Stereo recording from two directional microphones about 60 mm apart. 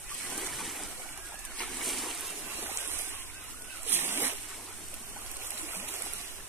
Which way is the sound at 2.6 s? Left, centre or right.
Right.